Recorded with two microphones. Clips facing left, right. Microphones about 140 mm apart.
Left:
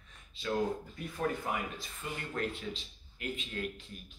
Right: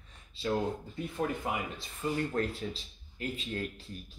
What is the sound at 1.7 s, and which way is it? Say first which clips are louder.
Speech: right 8 dB; 35° right (ahead or behind).